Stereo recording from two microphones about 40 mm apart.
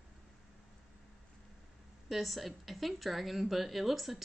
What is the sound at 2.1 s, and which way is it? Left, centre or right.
A woman's voice, centre.